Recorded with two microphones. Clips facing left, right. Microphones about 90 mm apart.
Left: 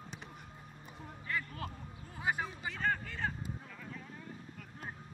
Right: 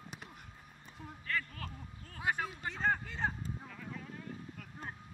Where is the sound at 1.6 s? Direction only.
20° left (ahead or behind).